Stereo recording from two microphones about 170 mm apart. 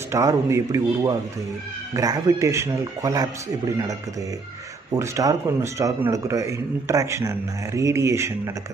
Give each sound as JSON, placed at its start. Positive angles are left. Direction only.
{"t": 0.1, "sound": "speech", "side_deg": -20}
{"t": 4.9, "sound": "a man's voice", "side_deg": -20}